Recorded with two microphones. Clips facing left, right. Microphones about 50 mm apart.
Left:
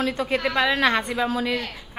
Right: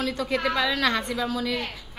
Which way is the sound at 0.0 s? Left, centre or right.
Left.